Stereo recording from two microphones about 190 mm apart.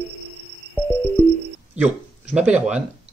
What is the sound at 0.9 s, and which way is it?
Music, 10° left (ahead or behind).